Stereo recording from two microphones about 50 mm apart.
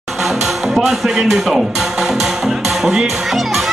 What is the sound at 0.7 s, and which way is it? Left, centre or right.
Speech, centre.